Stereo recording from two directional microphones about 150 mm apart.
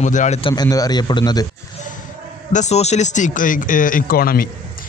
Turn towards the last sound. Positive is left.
turn(degrees=80)